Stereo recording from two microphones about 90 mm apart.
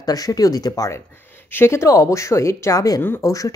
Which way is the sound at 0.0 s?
45° left (ahead or behind).